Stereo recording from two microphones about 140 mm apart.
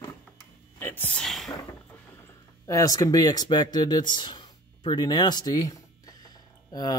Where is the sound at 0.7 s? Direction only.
15° left (ahead or behind).